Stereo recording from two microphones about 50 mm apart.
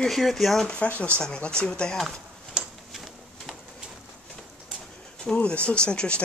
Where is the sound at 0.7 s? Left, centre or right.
Left.